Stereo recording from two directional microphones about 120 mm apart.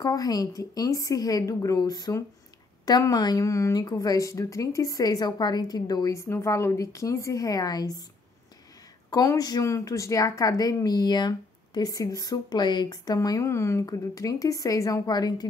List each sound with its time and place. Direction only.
0.0 s a woman's voice: 30° left (ahead or behind)
9.1 s speech: 30° left (ahead or behind)